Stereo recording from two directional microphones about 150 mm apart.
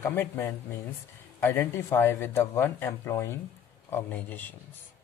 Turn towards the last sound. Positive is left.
turn(degrees=10)  # may be behind; listen again after turning